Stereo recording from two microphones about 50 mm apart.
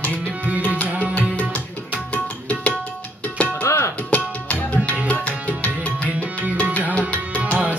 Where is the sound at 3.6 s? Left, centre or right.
Left.